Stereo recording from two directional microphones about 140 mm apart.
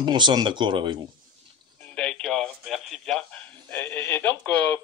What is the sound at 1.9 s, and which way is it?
A man's voice, 5° left (ahead or behind).